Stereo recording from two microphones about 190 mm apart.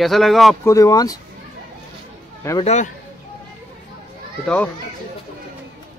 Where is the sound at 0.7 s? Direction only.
20° left (ahead or behind).